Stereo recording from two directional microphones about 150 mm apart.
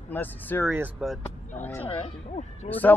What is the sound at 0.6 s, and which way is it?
Speech, 10° right (ahead or behind).